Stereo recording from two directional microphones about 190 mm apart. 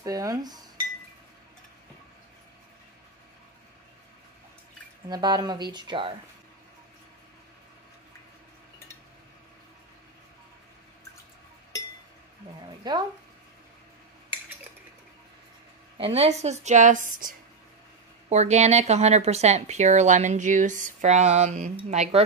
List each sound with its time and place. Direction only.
0.0 s speech: 20° right (ahead or behind)
5.1 s speech: 20° right (ahead or behind)
12.9 s speech: 25° right (ahead or behind)
16.0 s speech: 35° right (ahead or behind)